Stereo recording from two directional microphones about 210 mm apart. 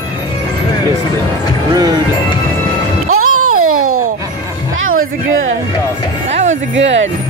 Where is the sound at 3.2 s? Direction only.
90° right.